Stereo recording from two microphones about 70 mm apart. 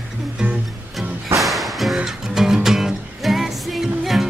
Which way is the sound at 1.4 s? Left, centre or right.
Centre.